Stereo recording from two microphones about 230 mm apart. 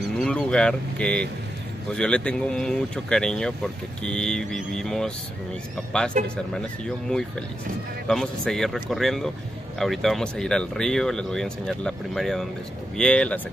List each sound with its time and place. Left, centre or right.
0.2 s speech: centre
6.2 s speech: right
8.1 s speech: centre